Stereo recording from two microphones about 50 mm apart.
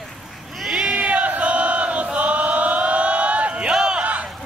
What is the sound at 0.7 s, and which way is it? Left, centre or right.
Battle cry, right.